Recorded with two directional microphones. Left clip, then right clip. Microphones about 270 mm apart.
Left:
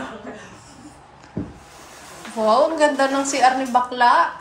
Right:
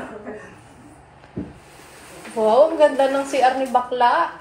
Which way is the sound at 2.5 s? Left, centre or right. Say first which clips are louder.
Right 2 dB; left.